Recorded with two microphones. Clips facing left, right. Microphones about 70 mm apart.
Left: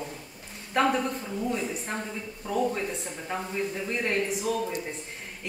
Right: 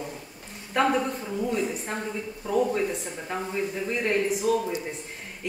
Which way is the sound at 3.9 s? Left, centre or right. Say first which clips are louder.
Right 4 dB; centre.